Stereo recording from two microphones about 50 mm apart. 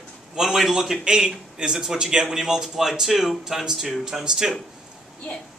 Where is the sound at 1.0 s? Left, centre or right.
Centre.